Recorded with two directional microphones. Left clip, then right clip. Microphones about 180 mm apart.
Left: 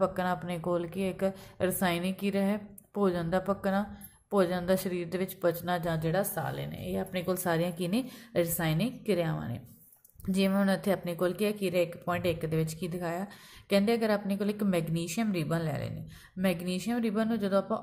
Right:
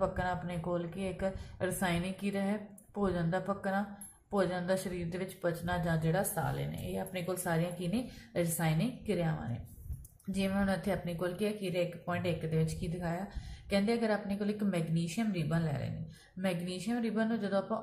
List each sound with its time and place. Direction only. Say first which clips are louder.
0.0 s a woman's voice: left 4 dB; 40° left (ahead or behind)